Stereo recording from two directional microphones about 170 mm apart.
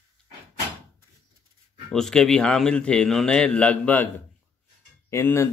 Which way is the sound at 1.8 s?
5° left (ahead or behind).